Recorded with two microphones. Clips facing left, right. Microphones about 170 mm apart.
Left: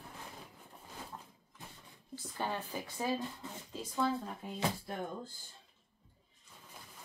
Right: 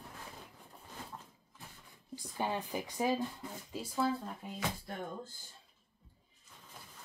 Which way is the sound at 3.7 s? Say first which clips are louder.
Even; 5° right (ahead or behind).